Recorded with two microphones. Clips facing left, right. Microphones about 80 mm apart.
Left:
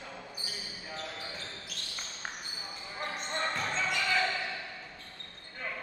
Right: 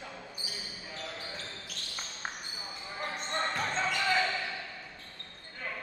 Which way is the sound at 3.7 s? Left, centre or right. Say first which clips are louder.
Right 2 dB; right.